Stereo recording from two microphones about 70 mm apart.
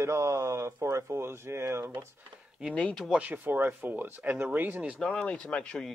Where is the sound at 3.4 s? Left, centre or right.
Right.